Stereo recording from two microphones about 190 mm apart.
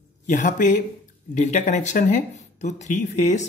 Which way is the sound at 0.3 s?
40° left (ahead or behind).